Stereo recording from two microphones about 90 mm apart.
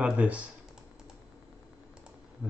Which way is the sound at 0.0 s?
15° right (ahead or behind).